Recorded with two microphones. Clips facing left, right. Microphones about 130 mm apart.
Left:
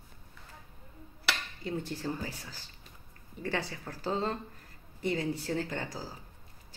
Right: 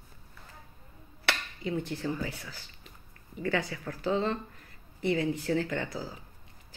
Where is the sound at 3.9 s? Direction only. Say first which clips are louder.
Right 3 dB; 40° left (ahead or behind).